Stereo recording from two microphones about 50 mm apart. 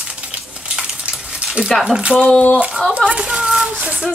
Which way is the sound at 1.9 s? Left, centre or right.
Centre.